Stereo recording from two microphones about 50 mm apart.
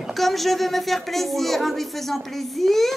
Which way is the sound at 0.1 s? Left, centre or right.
Centre.